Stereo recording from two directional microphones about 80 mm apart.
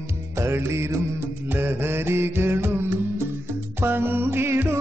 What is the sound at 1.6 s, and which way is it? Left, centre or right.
Mantra, right.